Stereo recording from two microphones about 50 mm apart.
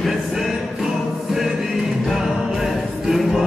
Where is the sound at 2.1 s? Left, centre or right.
Centre.